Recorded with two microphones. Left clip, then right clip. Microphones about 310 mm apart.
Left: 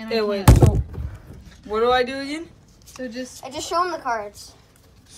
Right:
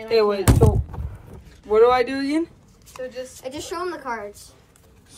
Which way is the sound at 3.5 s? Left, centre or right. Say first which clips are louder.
Left 7 dB; centre.